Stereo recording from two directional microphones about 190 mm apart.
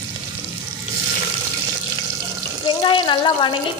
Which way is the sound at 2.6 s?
25° left (ahead or behind).